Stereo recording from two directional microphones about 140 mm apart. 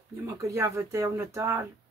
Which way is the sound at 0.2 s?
20° right (ahead or behind).